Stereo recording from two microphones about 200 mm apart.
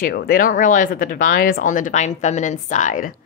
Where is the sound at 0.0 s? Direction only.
50° left (ahead or behind).